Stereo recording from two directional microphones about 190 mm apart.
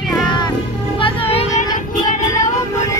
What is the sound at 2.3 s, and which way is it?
Child singing, 15° left (ahead or behind).